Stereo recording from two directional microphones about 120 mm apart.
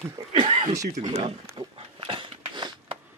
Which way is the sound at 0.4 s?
55° right (ahead or behind).